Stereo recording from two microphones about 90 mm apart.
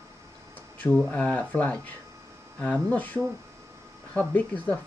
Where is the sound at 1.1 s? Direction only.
15° left (ahead or behind).